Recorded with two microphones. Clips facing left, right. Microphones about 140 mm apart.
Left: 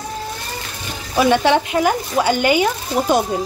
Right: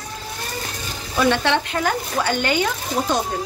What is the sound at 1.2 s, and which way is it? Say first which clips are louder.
Speech: left 4 dB; 10° left (ahead or behind).